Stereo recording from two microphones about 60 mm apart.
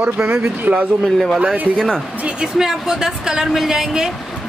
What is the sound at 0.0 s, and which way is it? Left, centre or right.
Speech, right.